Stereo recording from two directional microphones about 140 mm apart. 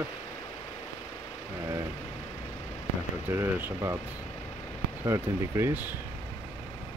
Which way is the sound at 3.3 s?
15° right (ahead or behind).